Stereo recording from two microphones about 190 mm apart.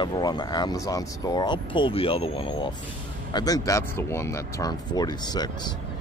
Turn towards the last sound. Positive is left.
turn(degrees=20)  # may be behind; listen again after turning